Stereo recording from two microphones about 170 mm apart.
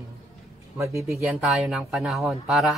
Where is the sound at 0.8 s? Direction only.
15° right (ahead or behind).